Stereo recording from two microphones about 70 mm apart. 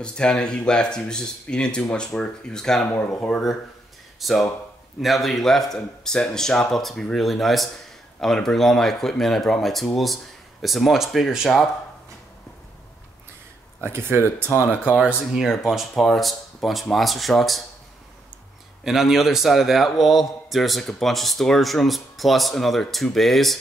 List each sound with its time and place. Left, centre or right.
0.0 s speech: centre
4.2 s a man's voice: centre
13.7 s speech: right
14.6 s speech: right
15.3 s a man's voice: centre
18.9 s a man's voice: centre